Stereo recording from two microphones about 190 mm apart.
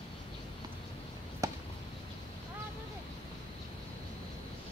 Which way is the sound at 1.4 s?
15° right (ahead or behind).